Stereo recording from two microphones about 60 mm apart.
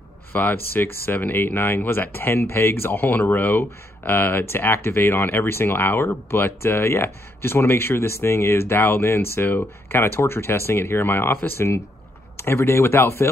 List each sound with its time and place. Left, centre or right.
0.3 s speech: left